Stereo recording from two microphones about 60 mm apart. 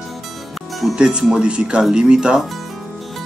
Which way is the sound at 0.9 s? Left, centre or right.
Centre.